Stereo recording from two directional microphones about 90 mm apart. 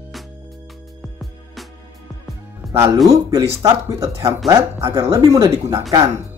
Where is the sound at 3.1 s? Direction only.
40° right (ahead or behind).